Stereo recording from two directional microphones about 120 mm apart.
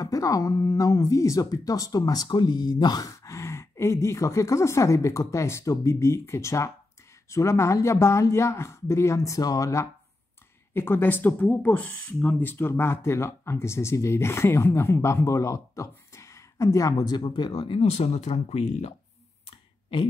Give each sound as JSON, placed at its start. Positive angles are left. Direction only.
{"t": 0.0, "sound": "speech", "side_deg": 30}
{"t": 17.7, "sound": "speech", "side_deg": 60}